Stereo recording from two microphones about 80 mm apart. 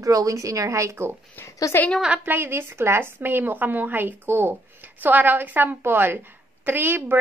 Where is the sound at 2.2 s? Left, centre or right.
Right.